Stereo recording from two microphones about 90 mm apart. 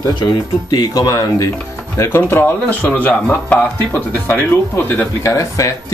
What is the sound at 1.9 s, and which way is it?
A man's voice, 25° left (ahead or behind).